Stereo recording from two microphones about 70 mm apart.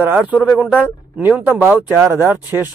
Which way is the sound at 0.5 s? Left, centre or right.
Centre.